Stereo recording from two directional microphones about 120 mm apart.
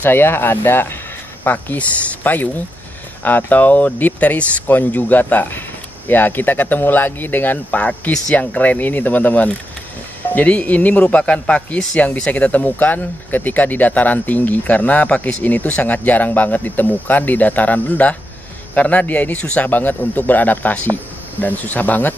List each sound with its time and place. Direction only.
0.0 s speech: 20° left (ahead or behind)